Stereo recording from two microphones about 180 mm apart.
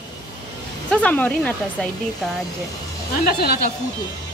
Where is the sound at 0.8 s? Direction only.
10° left (ahead or behind).